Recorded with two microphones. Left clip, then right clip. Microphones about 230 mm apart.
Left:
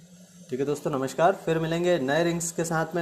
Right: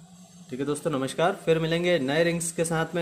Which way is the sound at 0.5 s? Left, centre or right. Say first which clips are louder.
Left 1 dB; centre.